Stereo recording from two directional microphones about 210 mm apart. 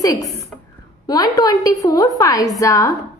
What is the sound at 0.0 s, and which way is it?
A woman's voice, 15° left (ahead or behind).